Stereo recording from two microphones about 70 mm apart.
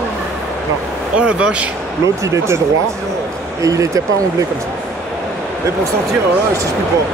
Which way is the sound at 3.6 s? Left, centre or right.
Right.